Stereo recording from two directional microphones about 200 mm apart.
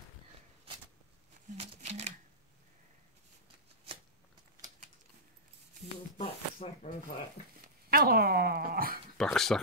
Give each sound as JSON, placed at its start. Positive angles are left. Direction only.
{"t": 1.6, "sound": "a sound", "side_deg": -35}
{"t": 6.1, "sound": "shuffling cards", "side_deg": 35}
{"t": 7.6, "sound": "dog", "side_deg": -50}
{"t": 9.2, "sound": "speech", "side_deg": 0}